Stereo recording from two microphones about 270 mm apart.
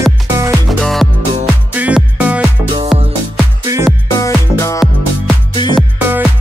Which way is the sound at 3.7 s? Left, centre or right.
Centre.